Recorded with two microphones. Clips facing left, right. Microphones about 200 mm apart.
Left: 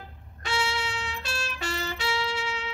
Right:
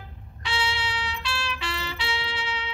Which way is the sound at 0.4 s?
45° left (ahead or behind).